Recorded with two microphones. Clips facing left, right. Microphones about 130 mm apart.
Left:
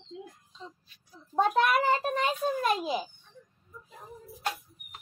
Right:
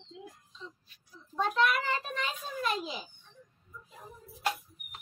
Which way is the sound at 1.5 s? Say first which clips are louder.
Left 2 dB; 50° left (ahead or behind).